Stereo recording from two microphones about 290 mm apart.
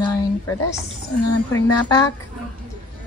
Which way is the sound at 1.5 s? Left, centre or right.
Centre.